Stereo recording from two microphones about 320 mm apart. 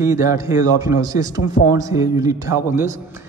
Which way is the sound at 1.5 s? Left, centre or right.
Left.